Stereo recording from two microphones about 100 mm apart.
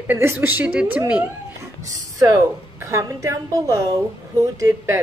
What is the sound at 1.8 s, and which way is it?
A woman's voice, 35° right (ahead or behind).